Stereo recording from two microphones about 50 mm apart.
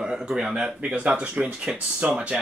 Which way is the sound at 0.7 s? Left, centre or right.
Right.